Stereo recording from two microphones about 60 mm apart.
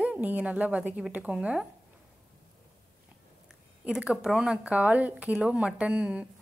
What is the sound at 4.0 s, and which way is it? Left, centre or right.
A woman's voice, centre.